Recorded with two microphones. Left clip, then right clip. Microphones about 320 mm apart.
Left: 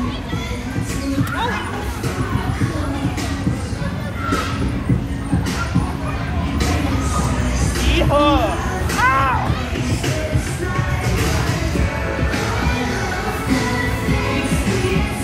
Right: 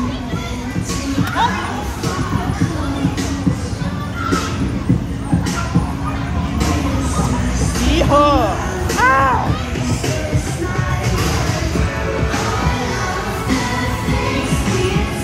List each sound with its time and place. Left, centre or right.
7.9 s music: right